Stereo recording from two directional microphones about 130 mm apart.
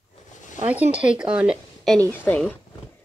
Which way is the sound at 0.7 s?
10° right (ahead or behind).